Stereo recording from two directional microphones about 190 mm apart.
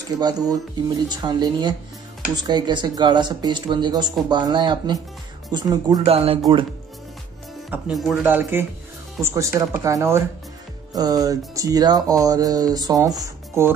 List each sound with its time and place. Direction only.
0.2 s speech: 20° right (ahead or behind)
7.7 s speech: centre (ahead or behind); by 13.7 s 20° right (ahead or behind)